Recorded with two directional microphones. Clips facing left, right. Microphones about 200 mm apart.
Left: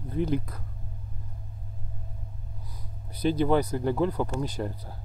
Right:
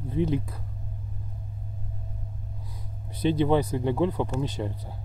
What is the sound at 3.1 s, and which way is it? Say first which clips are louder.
Speech: right 1 dB; 25° right (ahead or behind).